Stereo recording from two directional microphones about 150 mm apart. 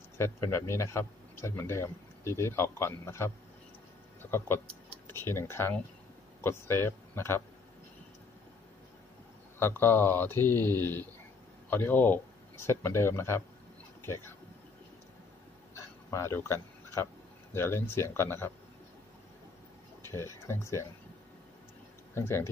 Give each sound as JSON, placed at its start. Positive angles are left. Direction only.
{"t": 0.2, "sound": "a man's voice", "side_deg": 20}
{"t": 9.6, "sound": "a man's voice", "side_deg": 15}
{"t": 15.7, "sound": "a sound", "side_deg": 20}
{"t": 17.6, "sound": "a man's voice", "side_deg": 15}
{"t": 20.0, "sound": "speech", "side_deg": 20}
{"t": 22.1, "sound": "speech", "side_deg": 15}